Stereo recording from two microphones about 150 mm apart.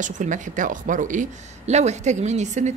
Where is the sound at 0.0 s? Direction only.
55° right (ahead or behind).